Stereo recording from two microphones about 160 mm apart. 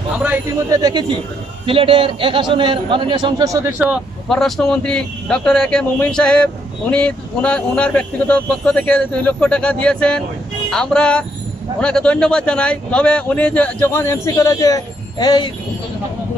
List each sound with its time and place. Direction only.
0.7 s a man's voice: 25° right (ahead or behind)
4.3 s speech: centre (ahead or behind); by 15.5 s 25° left (ahead or behind)